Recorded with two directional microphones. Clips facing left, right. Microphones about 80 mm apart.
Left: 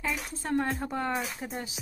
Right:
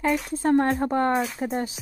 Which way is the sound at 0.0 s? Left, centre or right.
Right.